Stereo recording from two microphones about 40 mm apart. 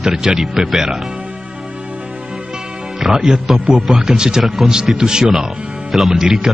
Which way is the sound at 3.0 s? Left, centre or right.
Centre.